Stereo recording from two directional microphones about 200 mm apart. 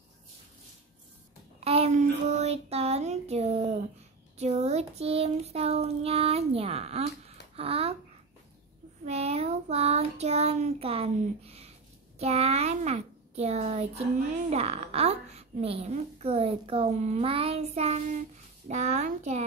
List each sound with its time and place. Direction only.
1.6 s a woman's voice: 30° right (ahead or behind)
7.5 s a sound: 30° right (ahead or behind)
9.0 s child singing: 30° right (ahead or behind)
12.2 s a woman's voice: 30° right (ahead or behind)